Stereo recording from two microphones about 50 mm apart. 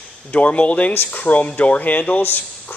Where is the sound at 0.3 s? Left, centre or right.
Left.